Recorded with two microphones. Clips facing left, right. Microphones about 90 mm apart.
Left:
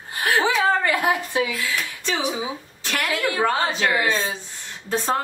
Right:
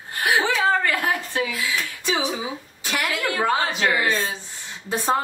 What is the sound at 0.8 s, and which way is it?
Speech, 20° left (ahead or behind).